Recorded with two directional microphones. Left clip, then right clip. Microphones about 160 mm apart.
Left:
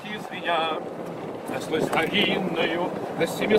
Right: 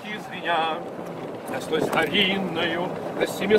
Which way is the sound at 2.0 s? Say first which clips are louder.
Right 1 dB; 15° left (ahead or behind).